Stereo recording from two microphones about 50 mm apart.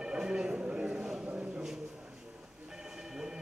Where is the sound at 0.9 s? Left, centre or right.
Centre.